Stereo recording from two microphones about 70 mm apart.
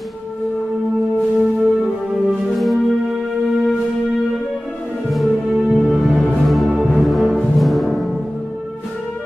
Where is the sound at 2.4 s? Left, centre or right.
Centre.